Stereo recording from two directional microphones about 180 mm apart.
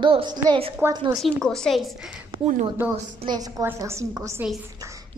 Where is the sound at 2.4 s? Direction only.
45° right (ahead or behind).